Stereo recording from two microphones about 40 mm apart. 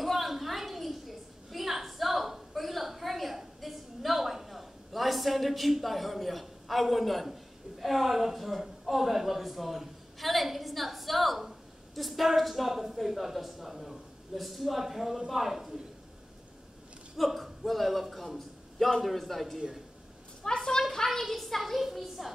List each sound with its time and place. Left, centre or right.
0.0 s a sound: centre
7.8 s speech: centre
17.2 s a man's voice: centre
20.4 s a woman's voice: centre